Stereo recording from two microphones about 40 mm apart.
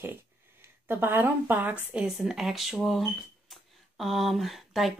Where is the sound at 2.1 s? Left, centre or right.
Centre.